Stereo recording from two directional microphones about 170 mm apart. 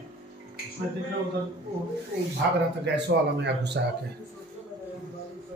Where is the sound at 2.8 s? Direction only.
90° right.